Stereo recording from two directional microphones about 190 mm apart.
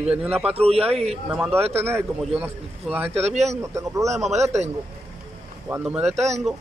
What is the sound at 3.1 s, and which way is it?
Speech, 35° right (ahead or behind).